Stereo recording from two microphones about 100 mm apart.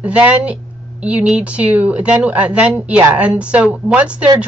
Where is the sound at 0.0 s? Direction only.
15° right (ahead or behind).